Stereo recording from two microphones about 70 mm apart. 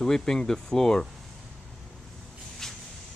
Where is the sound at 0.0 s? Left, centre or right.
Centre.